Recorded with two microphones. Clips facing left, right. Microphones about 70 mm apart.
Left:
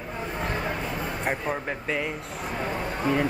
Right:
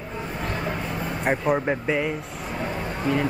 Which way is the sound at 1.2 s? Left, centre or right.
Centre.